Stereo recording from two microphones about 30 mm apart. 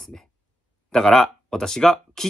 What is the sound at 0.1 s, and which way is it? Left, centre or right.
Speech, centre.